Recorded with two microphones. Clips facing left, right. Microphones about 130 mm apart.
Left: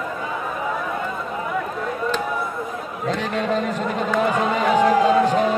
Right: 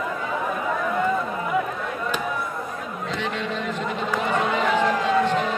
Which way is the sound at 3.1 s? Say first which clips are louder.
Left 6 dB; 40° left (ahead or behind).